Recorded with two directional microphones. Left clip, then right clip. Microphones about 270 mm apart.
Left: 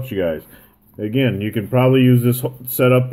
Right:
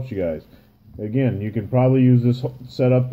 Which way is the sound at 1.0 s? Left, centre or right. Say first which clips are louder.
Left 4 dB; centre.